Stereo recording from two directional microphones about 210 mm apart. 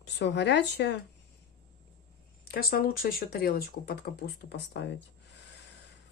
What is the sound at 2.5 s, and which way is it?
Speech, 45° left (ahead or behind).